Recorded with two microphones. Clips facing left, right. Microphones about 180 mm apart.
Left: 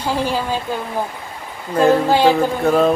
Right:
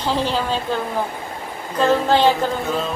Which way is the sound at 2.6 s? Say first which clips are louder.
Left 9 dB; 55° left (ahead or behind).